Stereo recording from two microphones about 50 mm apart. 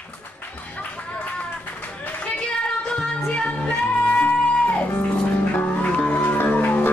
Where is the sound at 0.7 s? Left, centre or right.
Left.